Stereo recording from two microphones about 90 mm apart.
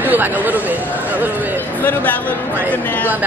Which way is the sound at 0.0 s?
20° right (ahead or behind).